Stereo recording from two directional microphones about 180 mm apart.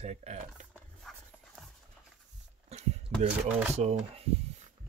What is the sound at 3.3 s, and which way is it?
Speech, 10° right (ahead or behind).